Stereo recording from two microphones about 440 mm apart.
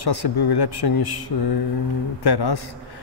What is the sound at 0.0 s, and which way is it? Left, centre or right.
A man's voice, left.